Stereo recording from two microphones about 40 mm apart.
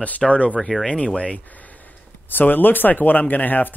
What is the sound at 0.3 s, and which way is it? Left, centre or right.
Speech, left.